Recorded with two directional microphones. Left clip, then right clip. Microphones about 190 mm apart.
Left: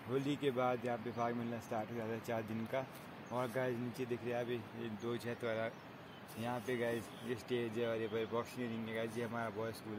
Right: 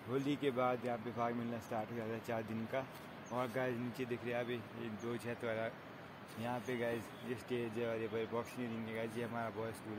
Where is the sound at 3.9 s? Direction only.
50° left (ahead or behind).